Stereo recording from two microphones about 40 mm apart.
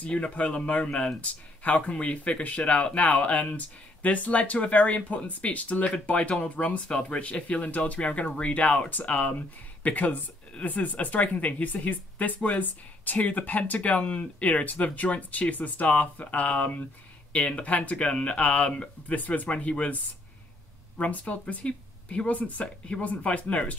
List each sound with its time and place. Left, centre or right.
0.1 s speech: left
21.0 s speech: left